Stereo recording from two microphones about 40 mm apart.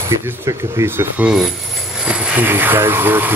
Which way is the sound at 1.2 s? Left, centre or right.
Right.